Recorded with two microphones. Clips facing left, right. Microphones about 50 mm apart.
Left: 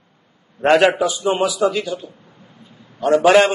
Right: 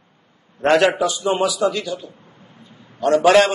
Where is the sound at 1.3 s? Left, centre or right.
Left.